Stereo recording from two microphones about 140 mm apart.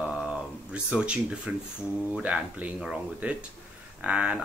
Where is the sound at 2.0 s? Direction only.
10° right (ahead or behind).